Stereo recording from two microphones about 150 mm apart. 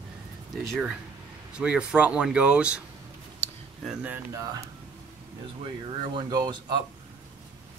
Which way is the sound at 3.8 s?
5° right (ahead or behind).